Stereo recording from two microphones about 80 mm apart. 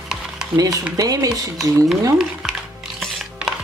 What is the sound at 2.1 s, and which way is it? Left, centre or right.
Music, centre.